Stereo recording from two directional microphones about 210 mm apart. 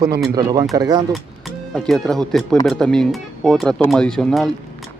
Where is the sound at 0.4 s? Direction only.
15° right (ahead or behind).